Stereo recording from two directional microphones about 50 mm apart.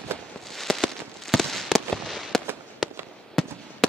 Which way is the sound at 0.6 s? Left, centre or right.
Centre.